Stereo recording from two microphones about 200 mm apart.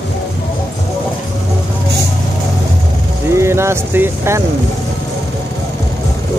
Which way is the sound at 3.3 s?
15° right (ahead or behind).